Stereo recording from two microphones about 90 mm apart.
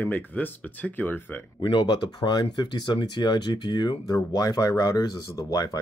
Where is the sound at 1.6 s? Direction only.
55° left (ahead or behind).